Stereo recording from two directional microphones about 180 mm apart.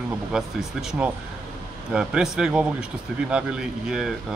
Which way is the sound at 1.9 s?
5° right (ahead or behind).